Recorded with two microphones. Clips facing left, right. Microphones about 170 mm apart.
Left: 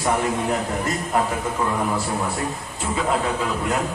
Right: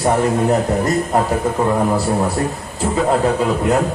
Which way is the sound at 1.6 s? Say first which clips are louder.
Right 6 dB; 40° right (ahead or behind).